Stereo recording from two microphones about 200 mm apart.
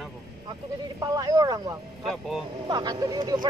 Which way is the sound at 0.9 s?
20° right (ahead or behind).